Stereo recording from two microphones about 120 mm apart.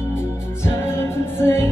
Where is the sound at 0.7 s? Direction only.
20° left (ahead or behind).